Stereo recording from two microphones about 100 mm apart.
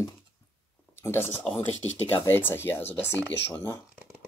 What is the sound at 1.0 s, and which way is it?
Speech, 25° left (ahead or behind).